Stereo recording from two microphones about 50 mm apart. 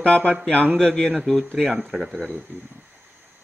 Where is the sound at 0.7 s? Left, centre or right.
Centre.